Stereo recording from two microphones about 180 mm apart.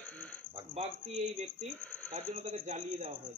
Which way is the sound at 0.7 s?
35° right (ahead or behind).